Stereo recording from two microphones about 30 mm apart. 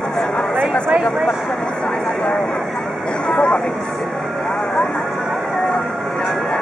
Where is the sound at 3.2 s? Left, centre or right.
Left.